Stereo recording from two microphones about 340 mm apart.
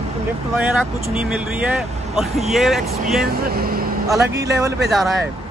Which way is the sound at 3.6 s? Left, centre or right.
Right.